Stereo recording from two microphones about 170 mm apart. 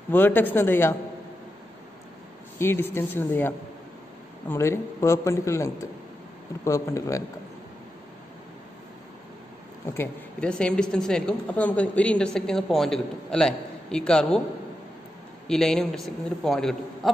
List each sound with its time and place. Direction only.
0.1 s a man's voice: 10° left (ahead or behind)
2.6 s a man's voice: 15° left (ahead or behind)
9.9 s a woman's voice: 5° left (ahead or behind)
15.4 s a woman's voice: 5° left (ahead or behind)